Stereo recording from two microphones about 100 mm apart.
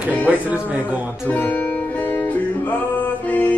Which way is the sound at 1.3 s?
20° left (ahead or behind).